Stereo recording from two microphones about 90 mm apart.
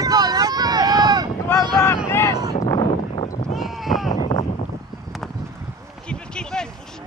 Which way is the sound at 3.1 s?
90° left.